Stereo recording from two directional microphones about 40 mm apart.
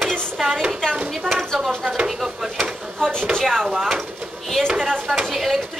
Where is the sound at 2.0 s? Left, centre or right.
Centre.